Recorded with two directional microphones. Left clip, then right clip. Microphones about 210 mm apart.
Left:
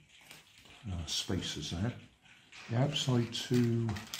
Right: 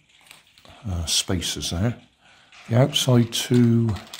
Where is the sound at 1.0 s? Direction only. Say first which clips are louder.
Right 12 dB; 55° right (ahead or behind).